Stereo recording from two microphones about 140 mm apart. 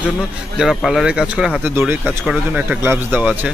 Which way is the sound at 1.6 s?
15° right (ahead or behind).